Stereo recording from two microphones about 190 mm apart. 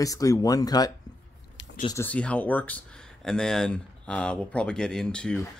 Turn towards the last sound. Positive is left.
turn(degrees=5)  # may be behind; listen again after turning